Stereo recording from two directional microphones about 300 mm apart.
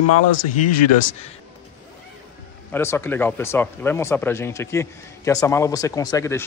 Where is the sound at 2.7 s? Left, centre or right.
Centre.